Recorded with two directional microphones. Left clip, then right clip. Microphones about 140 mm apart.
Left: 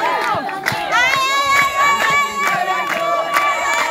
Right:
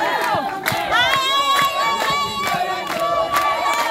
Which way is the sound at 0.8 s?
45° left (ahead or behind).